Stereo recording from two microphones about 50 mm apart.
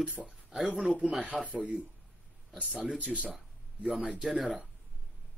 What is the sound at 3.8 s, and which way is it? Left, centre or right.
Speech, centre.